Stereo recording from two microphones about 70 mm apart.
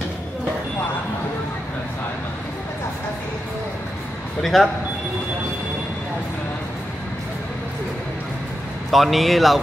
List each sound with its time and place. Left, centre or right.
4.4 s speech: centre
8.9 s speech: centre